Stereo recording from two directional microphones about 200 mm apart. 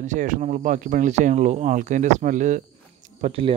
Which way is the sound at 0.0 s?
35° right (ahead or behind).